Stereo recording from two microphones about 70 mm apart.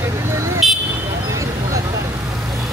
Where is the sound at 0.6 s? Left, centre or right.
Centre.